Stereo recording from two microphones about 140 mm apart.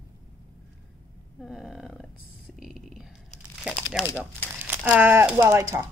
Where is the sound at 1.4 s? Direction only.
Centre (ahead or behind).